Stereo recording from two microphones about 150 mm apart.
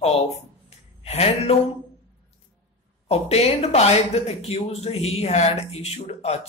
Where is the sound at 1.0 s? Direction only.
45° left (ahead or behind).